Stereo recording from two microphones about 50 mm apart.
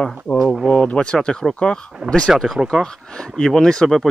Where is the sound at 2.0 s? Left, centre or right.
Right.